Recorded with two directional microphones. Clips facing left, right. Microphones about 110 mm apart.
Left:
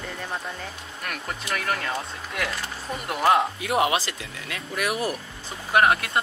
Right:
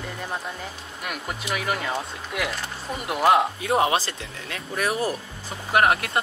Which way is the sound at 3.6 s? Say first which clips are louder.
Right 1 dB; 30° right (ahead or behind).